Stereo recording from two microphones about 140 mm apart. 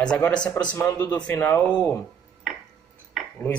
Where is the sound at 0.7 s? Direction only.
20° left (ahead or behind).